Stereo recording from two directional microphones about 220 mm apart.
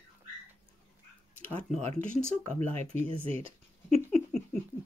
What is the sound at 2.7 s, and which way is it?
Speech, 30° right (ahead or behind).